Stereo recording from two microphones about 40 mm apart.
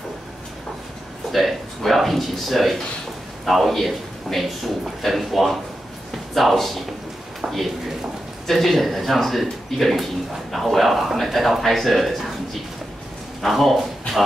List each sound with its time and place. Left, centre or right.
1.3 s a man's voice: centre
7.4 s speech: centre
8.5 s a man's voice: centre
13.4 s speech: centre